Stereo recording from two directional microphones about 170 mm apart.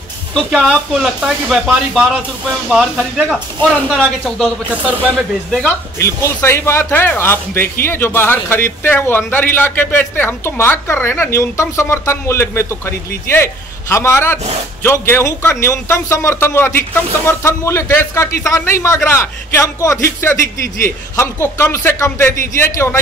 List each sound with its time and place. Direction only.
0.3 s speech: centre (ahead or behind)
5.6 s a man's voice: 15° left (ahead or behind)